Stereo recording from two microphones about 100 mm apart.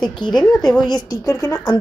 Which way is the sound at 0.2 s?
50° left (ahead or behind).